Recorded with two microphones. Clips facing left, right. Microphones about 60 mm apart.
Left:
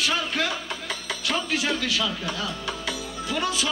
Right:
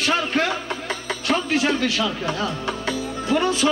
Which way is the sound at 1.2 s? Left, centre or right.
Right.